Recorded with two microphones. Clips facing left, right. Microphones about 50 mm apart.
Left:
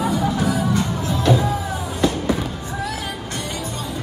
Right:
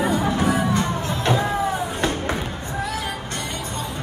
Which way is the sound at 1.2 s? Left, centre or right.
Right.